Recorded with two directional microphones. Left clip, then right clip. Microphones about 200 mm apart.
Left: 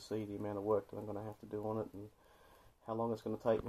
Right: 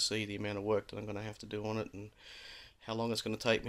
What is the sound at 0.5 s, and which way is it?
Speech, 25° right (ahead or behind).